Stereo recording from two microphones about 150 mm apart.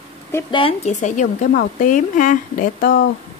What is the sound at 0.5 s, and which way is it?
Speech, 35° left (ahead or behind).